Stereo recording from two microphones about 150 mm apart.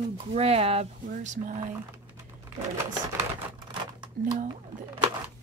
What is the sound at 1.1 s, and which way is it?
Speech, 55° right (ahead or behind).